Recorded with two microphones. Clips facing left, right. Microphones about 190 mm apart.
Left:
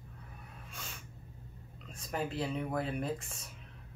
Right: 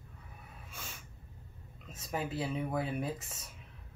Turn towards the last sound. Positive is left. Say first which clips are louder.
# even
turn(degrees=-5)  # may be behind; listen again after turning